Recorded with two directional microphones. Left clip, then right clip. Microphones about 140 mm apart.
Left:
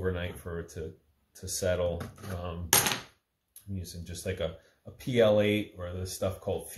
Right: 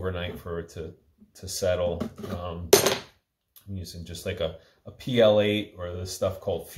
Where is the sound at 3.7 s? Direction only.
10° left (ahead or behind).